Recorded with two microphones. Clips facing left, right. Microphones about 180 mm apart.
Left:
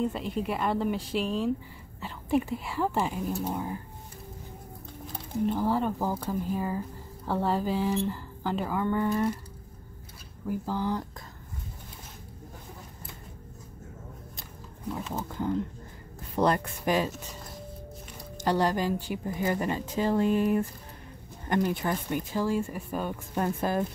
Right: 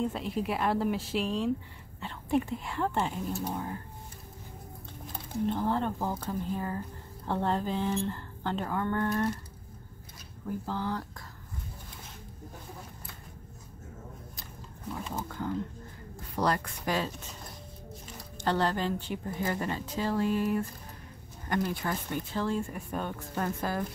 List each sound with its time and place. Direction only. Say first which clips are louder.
0.0 s speech: left 2 dB; centre (ahead or behind)
5.5 s speech: left 2 dB; 5° left (ahead or behind)
10.5 s speech: left 3 dB; 10° left (ahead or behind)
15.2 s speech: left 6 dB; 20° left (ahead or behind)
18.4 s speech: left 3 dB; 15° left (ahead or behind)
23.3 s speech: left 4 dB; 20° left (ahead or behind)